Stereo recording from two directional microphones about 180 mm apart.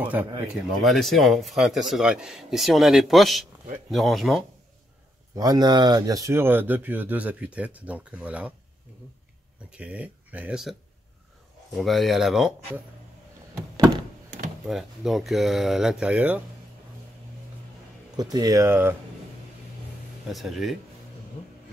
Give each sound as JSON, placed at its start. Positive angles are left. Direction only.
{"t": 0.0, "sound": "speech", "side_deg": -10}
{"t": 5.3, "sound": "speech", "side_deg": -20}
{"t": 9.7, "sound": "speech", "side_deg": -5}
{"t": 14.7, "sound": "speech", "side_deg": 0}
{"t": 18.1, "sound": "speech", "side_deg": -20}
{"t": 20.2, "sound": "speech", "side_deg": 0}